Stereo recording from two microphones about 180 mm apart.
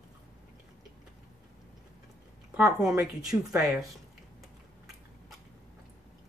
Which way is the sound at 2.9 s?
20° right (ahead or behind).